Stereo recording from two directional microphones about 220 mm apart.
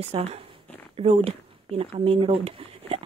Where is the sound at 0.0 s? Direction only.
30° right (ahead or behind).